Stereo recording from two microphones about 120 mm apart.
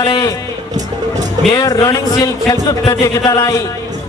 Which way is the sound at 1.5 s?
30° left (ahead or behind).